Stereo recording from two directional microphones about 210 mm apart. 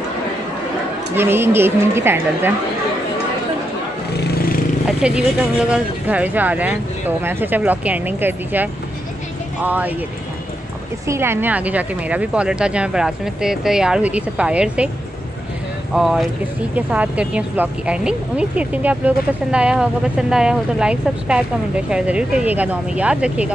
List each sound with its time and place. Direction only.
1.1 s speech: 10° right (ahead or behind)
4.2 s a sound: 45° left (ahead or behind)
4.8 s speech: 5° right (ahead or behind)
11.1 s speech: 10° right (ahead or behind)
15.9 s speech: centre (ahead or behind)